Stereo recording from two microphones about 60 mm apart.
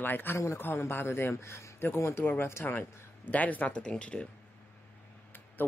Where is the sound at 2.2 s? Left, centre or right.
Left.